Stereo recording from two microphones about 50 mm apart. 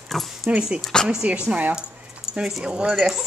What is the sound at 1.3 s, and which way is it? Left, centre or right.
Speech, right.